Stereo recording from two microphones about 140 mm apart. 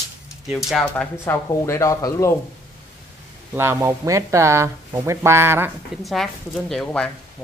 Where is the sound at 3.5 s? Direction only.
20° right (ahead or behind).